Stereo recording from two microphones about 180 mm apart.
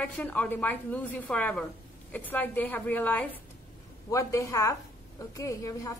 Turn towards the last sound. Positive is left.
turn(degrees=15)  # may be behind; listen again after turning